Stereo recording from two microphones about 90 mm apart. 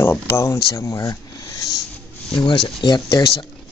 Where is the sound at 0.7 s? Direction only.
35° left (ahead or behind).